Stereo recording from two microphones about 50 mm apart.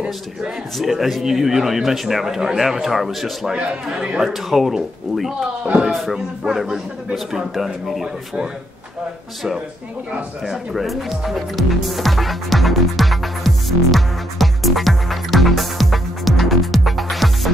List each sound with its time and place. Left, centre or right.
0.7 s a man's voice: centre
3.5 s a man's voice: centre
4.2 s a man's voice: centre
10.4 s music: centre